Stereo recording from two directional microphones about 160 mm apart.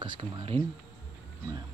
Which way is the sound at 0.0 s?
30° right (ahead or behind).